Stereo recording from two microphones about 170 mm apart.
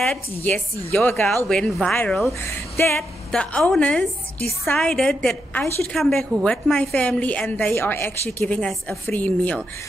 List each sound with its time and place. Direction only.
0.0 s a woman's voice: 5° left (ahead or behind)
3.0 s a woman's voice: 5° left (ahead or behind)